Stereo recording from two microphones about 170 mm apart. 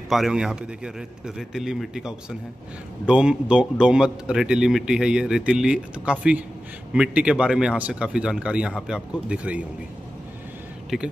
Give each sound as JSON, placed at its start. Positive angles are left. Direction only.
{"t": 0.1, "sound": "speech", "side_deg": 0}
{"t": 10.9, "sound": "speech", "side_deg": 0}